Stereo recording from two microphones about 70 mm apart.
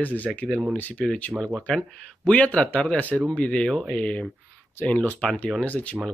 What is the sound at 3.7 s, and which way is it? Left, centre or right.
Speech, centre.